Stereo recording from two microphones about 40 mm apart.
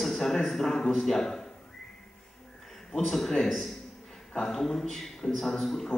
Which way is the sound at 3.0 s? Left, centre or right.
Centre.